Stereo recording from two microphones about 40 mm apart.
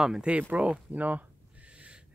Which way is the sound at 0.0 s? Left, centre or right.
Centre.